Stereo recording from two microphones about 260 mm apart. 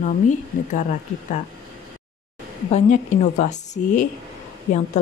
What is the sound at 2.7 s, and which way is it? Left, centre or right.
A woman's voice, left.